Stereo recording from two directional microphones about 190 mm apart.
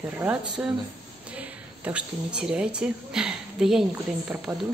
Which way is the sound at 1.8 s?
5° right (ahead or behind).